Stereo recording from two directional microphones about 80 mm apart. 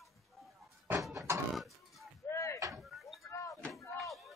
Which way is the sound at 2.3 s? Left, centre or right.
Left.